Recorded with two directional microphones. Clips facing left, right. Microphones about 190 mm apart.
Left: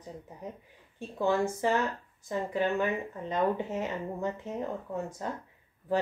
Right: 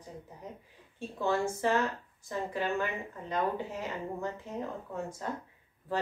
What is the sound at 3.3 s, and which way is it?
Speech, 20° left (ahead or behind).